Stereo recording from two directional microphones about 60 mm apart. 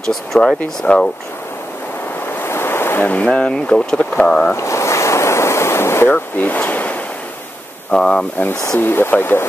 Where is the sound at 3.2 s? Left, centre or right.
Centre.